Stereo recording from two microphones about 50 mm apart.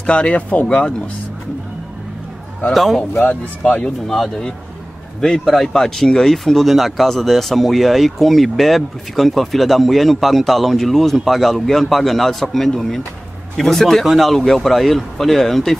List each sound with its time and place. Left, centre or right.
0.0 s speech: centre
2.7 s speech: centre
3.2 s speech: left
4.1 s speech: centre